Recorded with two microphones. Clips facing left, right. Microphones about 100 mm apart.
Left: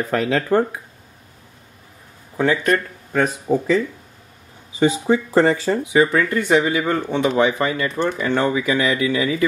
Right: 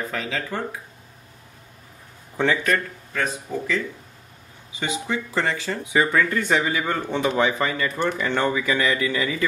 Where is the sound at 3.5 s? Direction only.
40° left (ahead or behind).